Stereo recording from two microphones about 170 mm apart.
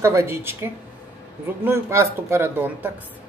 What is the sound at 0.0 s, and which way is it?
A man's voice, 15° right (ahead or behind).